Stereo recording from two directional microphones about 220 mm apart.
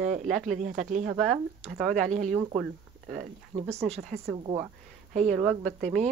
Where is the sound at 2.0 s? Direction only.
35° right (ahead or behind).